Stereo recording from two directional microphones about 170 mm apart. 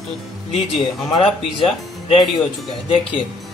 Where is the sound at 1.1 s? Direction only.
30° left (ahead or behind).